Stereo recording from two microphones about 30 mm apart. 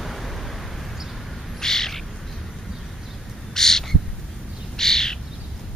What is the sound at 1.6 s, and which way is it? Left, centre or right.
Bird, centre.